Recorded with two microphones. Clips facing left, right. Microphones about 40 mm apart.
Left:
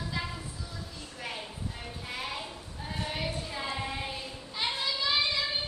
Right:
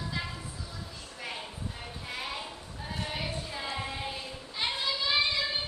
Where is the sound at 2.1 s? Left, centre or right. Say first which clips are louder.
Even; centre.